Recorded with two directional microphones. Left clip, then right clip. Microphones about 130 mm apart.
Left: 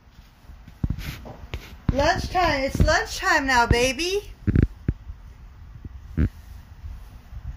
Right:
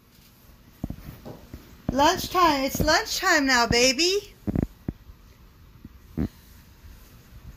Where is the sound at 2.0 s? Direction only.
15° left (ahead or behind).